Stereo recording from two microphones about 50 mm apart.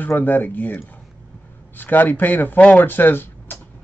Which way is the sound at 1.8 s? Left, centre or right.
Left.